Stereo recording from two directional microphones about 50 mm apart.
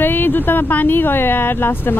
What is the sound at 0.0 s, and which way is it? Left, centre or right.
Speech, left.